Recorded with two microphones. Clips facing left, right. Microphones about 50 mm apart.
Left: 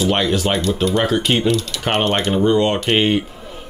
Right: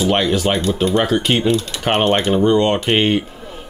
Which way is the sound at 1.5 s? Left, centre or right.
Right.